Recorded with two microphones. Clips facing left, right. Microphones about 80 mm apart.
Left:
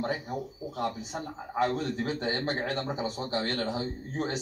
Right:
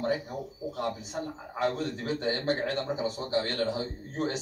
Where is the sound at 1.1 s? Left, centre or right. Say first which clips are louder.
Right 2 dB; left.